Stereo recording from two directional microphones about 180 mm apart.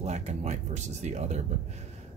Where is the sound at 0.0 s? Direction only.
40° right (ahead or behind).